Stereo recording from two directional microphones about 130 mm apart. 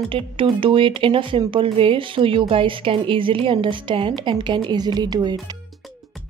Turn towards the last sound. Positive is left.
turn(degrees=-30)  # may be behind; listen again after turning